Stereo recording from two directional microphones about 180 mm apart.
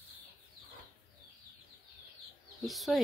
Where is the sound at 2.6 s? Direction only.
Centre (ahead or behind).